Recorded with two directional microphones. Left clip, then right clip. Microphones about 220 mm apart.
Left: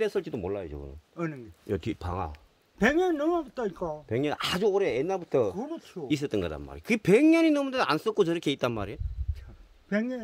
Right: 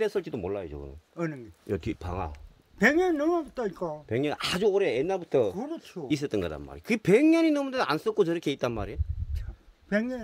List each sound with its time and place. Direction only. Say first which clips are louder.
0.0 s speech: even; centre (ahead or behind)
1.1 s speech: right 1 dB; 30° right (ahead or behind)
1.7 s speech: even; 5° left (ahead or behind)
2.8 s speech: right 1 dB; 30° right (ahead or behind)
4.1 s speech: even; centre (ahead or behind)
5.5 s speech: even; 35° right (ahead or behind)
6.0 s speech: even; centre (ahead or behind)
9.8 s speech: right 1 dB; 40° right (ahead or behind)